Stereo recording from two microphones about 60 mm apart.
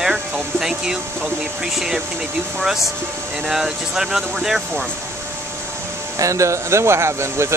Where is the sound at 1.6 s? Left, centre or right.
Centre.